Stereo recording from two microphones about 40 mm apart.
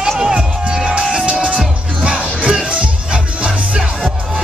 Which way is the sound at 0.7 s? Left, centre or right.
Right.